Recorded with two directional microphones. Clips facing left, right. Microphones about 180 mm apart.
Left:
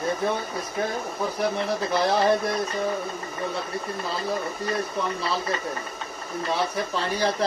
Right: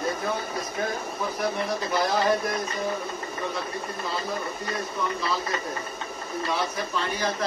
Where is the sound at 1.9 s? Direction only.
30° left (ahead or behind).